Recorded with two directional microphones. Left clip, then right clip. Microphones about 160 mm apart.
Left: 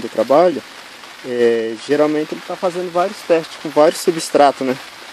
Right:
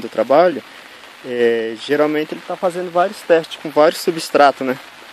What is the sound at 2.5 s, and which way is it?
Speech, 30° right (ahead or behind).